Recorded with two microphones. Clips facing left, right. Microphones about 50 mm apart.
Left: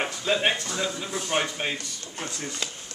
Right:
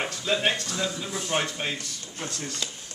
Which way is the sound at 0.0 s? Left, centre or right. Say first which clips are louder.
Left 1 dB; centre.